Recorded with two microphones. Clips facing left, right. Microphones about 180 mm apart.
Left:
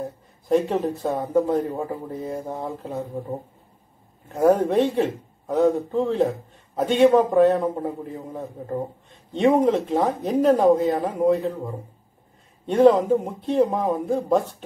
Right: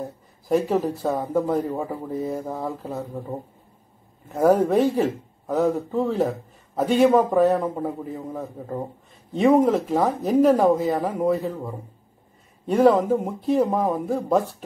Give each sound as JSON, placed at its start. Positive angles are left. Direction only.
{"t": 0.5, "sound": "speech", "side_deg": -5}
{"t": 4.3, "sound": "speech", "side_deg": 0}
{"t": 9.3, "sound": "speech", "side_deg": -5}
{"t": 12.6, "sound": "speech", "side_deg": -5}